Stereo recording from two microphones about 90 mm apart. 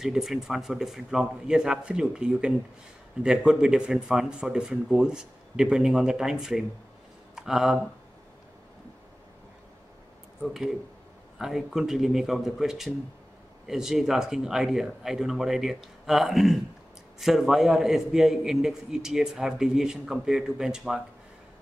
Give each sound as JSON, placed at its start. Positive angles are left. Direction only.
{"t": 0.0, "sound": "a man's voice", "side_deg": -5}
{"t": 10.5, "sound": "a man's voice", "side_deg": -5}